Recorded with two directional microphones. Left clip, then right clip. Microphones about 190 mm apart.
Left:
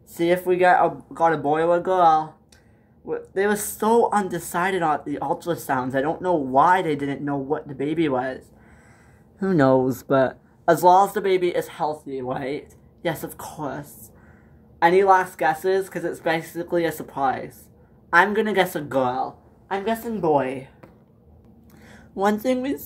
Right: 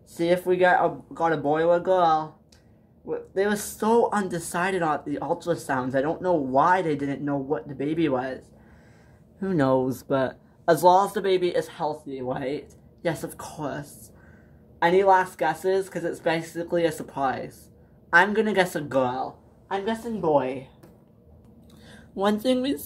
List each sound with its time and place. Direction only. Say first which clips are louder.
0.1 s speech: left 2 dB; 5° left (ahead or behind)
9.4 s speech: left 5 dB; 20° left (ahead or behind); by 19.3 s 5° left (ahead or behind)
19.7 s a woman's voice: left 3 dB; 20° left (ahead or behind)
21.8 s speech: left 3 dB; centre (ahead or behind)